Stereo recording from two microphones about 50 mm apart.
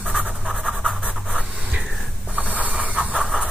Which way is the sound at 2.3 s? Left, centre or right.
Right.